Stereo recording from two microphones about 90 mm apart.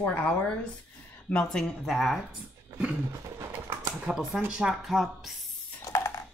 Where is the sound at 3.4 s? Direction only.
25° right (ahead or behind).